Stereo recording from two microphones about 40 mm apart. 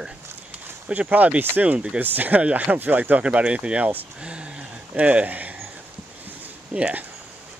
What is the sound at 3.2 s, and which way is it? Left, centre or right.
Speech, right.